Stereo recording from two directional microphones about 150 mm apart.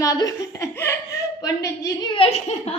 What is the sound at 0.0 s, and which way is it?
A woman's voice, 25° left (ahead or behind).